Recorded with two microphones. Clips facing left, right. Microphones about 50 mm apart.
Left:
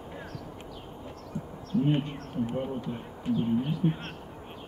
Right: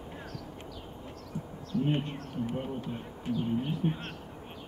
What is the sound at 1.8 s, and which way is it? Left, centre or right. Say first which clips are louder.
Speech: left 3 dB; centre.